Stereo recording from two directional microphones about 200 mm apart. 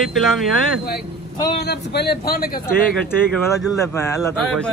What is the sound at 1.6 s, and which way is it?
Speech, 55° left (ahead or behind).